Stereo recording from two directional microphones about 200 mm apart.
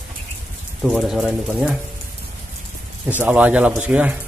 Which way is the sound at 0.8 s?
Centre (ahead or behind).